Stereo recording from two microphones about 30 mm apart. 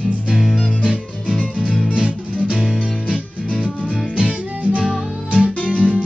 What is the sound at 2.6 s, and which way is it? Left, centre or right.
Music, left.